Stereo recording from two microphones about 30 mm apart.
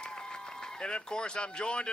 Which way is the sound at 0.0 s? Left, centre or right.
Left.